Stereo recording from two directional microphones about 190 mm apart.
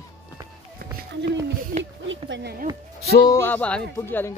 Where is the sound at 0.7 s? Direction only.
60° right (ahead or behind).